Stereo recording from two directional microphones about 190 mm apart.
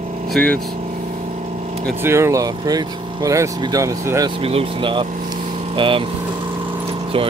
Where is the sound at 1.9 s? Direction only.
15° right (ahead or behind).